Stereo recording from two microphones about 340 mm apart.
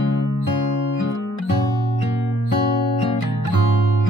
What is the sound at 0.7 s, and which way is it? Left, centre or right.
Music, left.